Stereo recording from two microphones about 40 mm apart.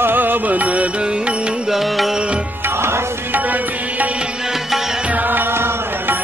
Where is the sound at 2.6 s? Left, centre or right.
Right.